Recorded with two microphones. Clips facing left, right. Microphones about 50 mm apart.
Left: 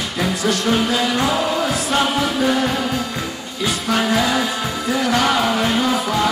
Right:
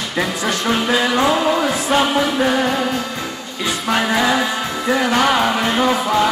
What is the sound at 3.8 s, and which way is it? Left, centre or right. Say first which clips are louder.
Music: right 2 dB; right.